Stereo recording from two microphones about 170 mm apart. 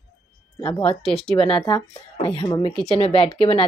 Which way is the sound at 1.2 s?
35° left (ahead or behind).